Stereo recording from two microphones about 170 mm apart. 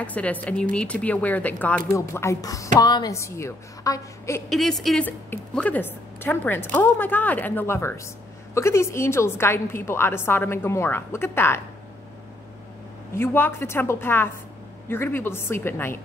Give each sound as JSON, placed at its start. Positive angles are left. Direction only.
{"t": 0.0, "sound": "a woman's voice", "side_deg": 10}
{"t": 4.5, "sound": "a woman's voice", "side_deg": 0}
{"t": 13.1, "sound": "a woman's voice", "side_deg": 15}